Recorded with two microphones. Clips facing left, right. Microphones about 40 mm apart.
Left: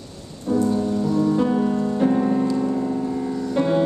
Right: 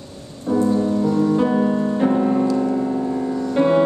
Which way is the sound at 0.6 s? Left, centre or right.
Right.